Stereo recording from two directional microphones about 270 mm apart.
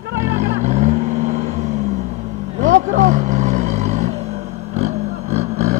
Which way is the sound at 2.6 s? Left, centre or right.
Right.